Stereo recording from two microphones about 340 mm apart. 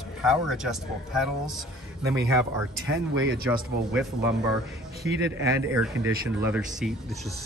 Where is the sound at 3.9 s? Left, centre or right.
Centre.